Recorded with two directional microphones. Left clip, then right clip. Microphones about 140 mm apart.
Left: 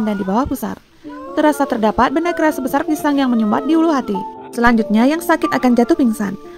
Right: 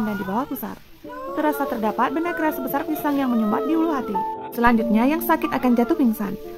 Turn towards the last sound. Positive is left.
turn(degrees=30)  # may be behind; listen again after turning